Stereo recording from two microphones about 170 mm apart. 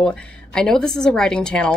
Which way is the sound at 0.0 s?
5° left (ahead or behind).